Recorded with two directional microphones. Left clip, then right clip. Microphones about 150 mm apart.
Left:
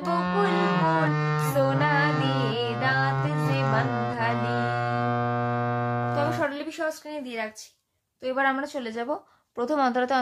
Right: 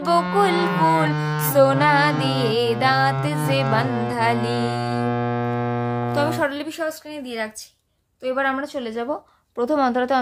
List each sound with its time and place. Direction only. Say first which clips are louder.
0.2 s music: right 5 dB; 15° right (ahead or behind)
1.6 s music: right 8 dB; 70° right (ahead or behind)
2.0 s music: right 5 dB; 25° right (ahead or behind)
2.5 s music: right 7 dB; 65° right (ahead or behind)
3.8 s music: right 3 dB; 30° right (ahead or behind)
4.1 s music: right 6 dB; 65° right (ahead or behind)
4.4 s music: right 3 dB; 30° right (ahead or behind)
6.1 s music: right 7 dB; 50° right (ahead or behind); by 7.4 s 35° right (ahead or behind)
8.2 s a woman's voice: right 3 dB; 35° right (ahead or behind)